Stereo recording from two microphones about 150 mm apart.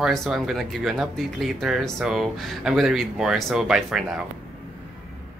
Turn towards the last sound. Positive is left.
turn(degrees=-5)  # may be behind; listen again after turning